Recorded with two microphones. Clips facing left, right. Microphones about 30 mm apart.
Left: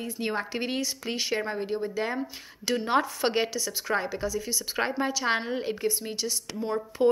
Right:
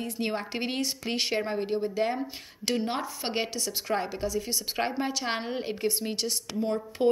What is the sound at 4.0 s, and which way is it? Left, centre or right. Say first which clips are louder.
Speech: left 1 dB; centre.